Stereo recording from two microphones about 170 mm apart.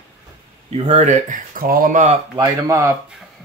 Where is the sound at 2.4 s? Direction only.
20° right (ahead or behind).